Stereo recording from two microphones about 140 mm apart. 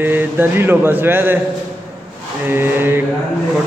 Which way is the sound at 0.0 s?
15° right (ahead or behind).